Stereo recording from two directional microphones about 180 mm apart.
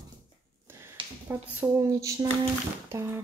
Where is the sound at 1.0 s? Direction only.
30° right (ahead or behind).